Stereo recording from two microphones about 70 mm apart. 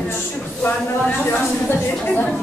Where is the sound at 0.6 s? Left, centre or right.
Left.